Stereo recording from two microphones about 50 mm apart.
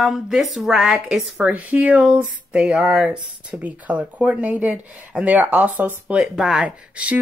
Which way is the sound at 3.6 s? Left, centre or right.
Right.